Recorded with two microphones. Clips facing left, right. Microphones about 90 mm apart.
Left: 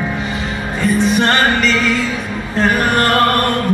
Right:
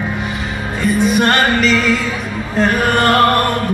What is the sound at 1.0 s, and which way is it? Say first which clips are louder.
Music: right 1 dB; 5° right (ahead or behind).